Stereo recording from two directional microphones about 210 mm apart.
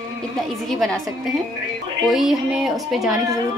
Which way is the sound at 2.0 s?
Centre (ahead or behind).